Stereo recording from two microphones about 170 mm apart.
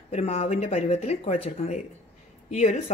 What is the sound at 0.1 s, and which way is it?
A woman's voice, 40° left (ahead or behind).